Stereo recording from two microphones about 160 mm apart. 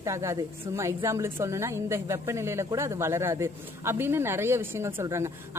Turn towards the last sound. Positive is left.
turn(degrees=-15)  # may be behind; listen again after turning